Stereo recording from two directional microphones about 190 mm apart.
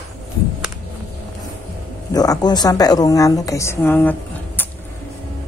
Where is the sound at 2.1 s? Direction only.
20° left (ahead or behind).